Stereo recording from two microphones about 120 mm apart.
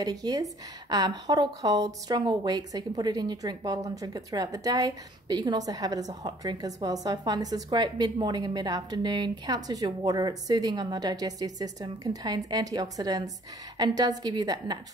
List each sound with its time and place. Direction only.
0.0 s a woman's voice: 30° right (ahead or behind)